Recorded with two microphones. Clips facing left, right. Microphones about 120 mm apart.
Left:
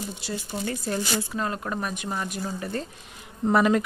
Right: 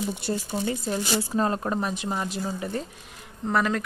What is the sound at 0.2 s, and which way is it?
Speech, 55° right (ahead or behind).